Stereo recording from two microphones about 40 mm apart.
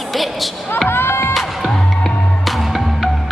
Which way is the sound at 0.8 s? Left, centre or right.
Left.